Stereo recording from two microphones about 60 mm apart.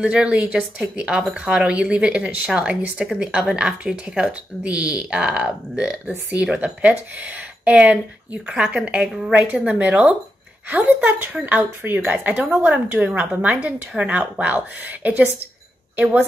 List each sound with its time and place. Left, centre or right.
0.0 s a woman's voice: centre